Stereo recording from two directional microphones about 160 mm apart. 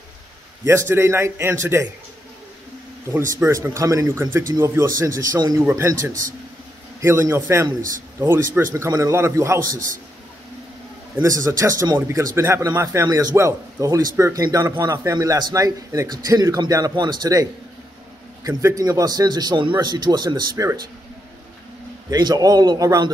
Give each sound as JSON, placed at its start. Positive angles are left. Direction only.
{"t": 0.7, "sound": "a man's voice", "side_deg": -15}
{"t": 3.1, "sound": "a man's voice", "side_deg": -15}
{"t": 8.7, "sound": "a man's voice", "side_deg": -20}
{"t": 11.1, "sound": "a man's voice", "side_deg": -20}
{"t": 22.1, "sound": "a man's voice", "side_deg": -25}